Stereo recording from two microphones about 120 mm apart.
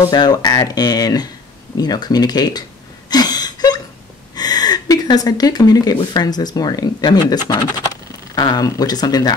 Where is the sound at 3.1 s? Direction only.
35° left (ahead or behind).